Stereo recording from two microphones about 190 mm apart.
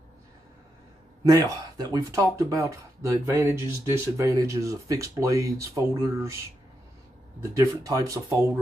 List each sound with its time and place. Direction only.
1.2 s speech: 20° right (ahead or behind)
7.5 s speech: 15° right (ahead or behind)